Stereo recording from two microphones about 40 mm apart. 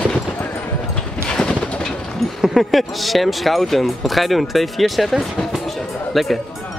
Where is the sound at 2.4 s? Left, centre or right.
Centre.